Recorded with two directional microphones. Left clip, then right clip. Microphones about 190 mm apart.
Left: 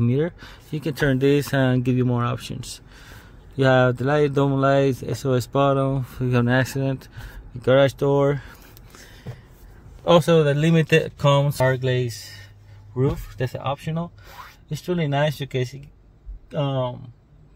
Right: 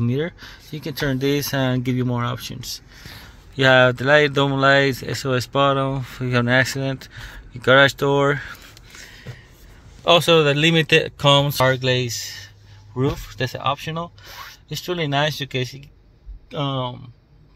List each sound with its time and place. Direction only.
0.0 s speech: 15° left (ahead or behind)
9.0 s a sound: 30° left (ahead or behind)
10.0 s speech: 10° left (ahead or behind)